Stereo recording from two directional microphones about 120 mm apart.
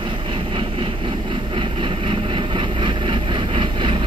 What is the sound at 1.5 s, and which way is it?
Vehicle, 45° right (ahead or behind).